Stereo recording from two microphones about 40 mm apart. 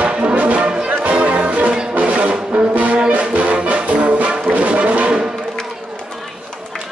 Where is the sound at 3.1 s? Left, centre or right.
Right.